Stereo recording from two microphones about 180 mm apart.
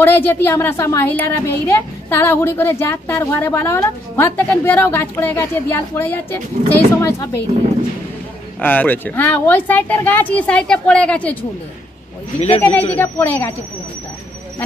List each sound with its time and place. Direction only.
0.0 s a woman's voice: 10° left (ahead or behind)
8.5 s a woman's voice: 10° left (ahead or behind)
12.4 s speech: 35° left (ahead or behind)
12.9 s a woman's voice: 10° left (ahead or behind)